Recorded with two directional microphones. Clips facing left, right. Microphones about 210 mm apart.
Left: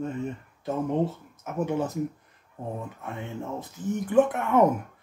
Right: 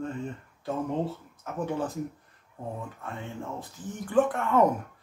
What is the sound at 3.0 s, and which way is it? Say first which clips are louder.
Speech: left 2 dB; 20° left (ahead or behind).